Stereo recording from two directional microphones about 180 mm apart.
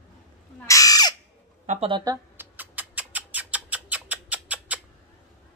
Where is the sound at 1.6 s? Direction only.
40° right (ahead or behind).